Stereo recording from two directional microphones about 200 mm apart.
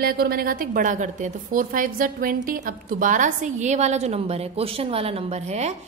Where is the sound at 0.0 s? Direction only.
50° right (ahead or behind).